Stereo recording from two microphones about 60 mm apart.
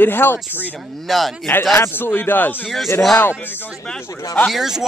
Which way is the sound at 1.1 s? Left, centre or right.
Centre.